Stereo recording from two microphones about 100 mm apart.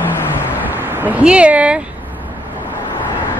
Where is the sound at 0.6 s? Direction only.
20° right (ahead or behind).